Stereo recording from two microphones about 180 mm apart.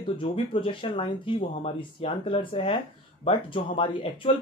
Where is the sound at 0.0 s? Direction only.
30° left (ahead or behind).